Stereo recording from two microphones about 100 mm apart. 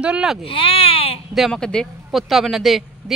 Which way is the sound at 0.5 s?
70° left (ahead or behind).